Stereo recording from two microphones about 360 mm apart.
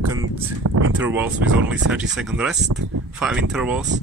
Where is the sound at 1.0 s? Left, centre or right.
Centre.